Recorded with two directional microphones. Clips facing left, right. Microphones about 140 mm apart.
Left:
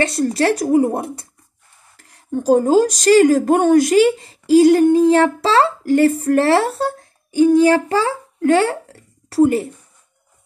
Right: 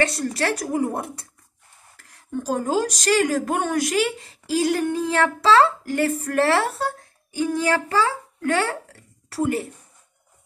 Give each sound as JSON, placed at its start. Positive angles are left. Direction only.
{"t": 0.0, "sound": "speech", "side_deg": 30}